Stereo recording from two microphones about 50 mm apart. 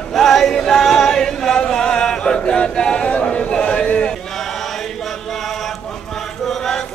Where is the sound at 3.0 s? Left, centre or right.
Left.